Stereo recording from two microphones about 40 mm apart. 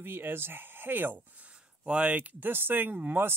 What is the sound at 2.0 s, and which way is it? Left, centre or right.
Speech, right.